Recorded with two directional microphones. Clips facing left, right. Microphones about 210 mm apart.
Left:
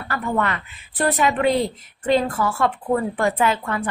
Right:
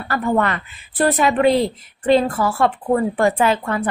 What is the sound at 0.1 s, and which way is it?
A woman's voice, 35° right (ahead or behind).